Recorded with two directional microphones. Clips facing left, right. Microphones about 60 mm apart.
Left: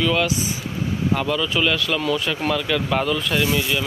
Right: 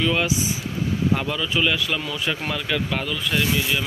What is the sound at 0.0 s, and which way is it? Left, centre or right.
Speech, centre.